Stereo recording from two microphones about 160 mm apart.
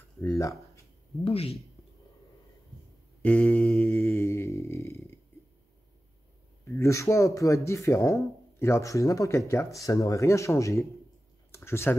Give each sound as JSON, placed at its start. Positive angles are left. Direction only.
{"t": 0.2, "sound": "speech", "side_deg": 15}
{"t": 1.2, "sound": "speech", "side_deg": 40}
{"t": 3.2, "sound": "mantra", "side_deg": 10}
{"t": 4.1, "sound": "mantra", "side_deg": 15}
{"t": 6.6, "sound": "speech", "side_deg": 15}
{"t": 11.5, "sound": "a sound", "side_deg": 15}